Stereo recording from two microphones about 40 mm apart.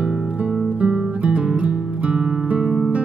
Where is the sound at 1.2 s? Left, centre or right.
Right.